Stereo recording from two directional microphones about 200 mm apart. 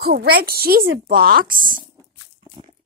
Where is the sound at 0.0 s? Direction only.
50° right (ahead or behind).